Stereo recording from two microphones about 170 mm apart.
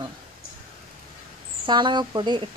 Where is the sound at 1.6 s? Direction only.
25° right (ahead or behind).